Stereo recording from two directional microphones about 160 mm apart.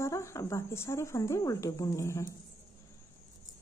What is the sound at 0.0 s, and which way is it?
A woman's voice, 15° left (ahead or behind).